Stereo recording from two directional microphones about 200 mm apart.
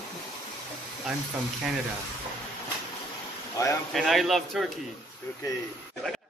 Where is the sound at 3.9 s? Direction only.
Centre (ahead or behind).